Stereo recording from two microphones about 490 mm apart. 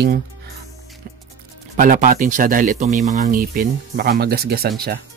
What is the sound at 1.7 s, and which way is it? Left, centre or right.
Speech, centre.